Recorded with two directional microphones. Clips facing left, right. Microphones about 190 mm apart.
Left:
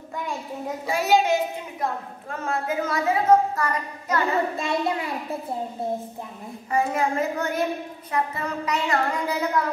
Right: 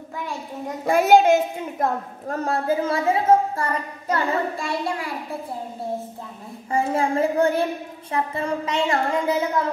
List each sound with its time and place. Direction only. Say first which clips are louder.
0.8 s a woman's voice: right 6 dB; 50° right (ahead or behind); by 4.2 s 30° right (ahead or behind)
4.6 s a woman's voice: left 1 dB; 20° left (ahead or behind)
6.7 s a woman's voice: right 2 dB; 30° right (ahead or behind)